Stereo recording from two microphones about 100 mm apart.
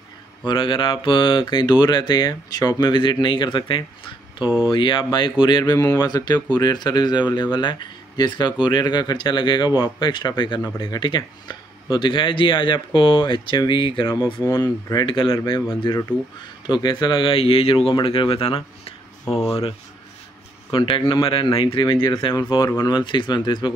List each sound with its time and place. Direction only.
0.5 s speech: 55° left (ahead or behind)
5.8 s speech: 35° left (ahead or behind); by 14.1 s 55° left (ahead or behind)
14.4 s speech: 30° left (ahead or behind)
15.0 s speech: 55° left (ahead or behind)
15.9 s speech: 30° left (ahead or behind)
16.7 s speech: 50° left (ahead or behind); by 18.9 s 70° left (ahead or behind)
20.7 s speech: 60° left (ahead or behind)
22.0 s speech: 45° left (ahead or behind)